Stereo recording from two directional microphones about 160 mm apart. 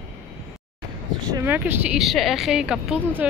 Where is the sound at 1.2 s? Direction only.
25° right (ahead or behind).